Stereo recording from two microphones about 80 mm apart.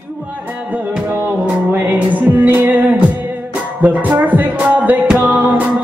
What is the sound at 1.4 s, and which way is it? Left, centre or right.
Music, right.